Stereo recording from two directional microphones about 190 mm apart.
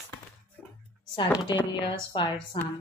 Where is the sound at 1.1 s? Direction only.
25° left (ahead or behind).